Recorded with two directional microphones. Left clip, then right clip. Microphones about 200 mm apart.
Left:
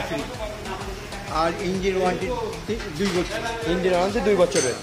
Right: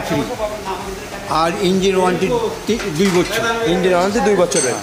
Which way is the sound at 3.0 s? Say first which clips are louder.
Right 8 dB; 50° right (ahead or behind).